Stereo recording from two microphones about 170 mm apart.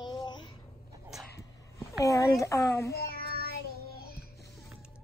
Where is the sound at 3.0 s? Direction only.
65° left (ahead or behind).